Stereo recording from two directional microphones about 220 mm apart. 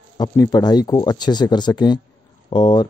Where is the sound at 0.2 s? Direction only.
20° left (ahead or behind).